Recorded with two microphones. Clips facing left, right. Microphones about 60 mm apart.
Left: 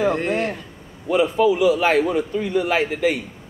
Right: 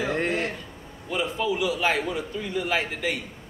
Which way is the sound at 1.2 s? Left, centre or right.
Centre.